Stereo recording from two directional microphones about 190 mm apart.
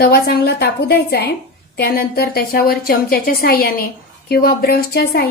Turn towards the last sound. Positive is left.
turn(degrees=55)  # may be behind; listen again after turning